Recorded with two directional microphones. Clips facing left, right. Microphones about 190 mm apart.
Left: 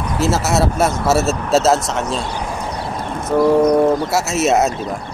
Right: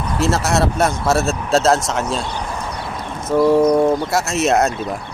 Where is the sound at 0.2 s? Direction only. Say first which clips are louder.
Left 1 dB; 5° left (ahead or behind).